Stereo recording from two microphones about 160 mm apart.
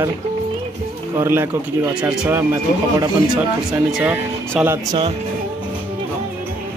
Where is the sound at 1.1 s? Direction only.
15° right (ahead or behind).